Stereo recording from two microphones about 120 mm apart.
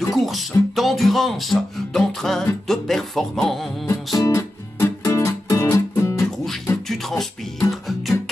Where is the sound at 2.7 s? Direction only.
5° left (ahead or behind).